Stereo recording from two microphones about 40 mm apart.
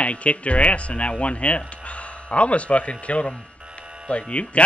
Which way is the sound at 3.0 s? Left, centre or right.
Left.